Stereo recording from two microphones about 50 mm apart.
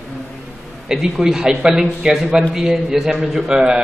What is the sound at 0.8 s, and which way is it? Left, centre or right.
A man's voice, centre.